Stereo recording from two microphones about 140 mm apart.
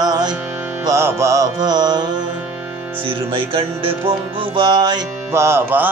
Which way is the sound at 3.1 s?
40° right (ahead or behind).